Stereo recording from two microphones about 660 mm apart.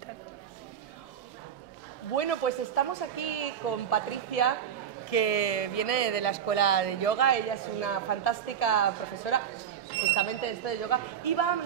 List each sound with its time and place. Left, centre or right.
2.1 s speech: left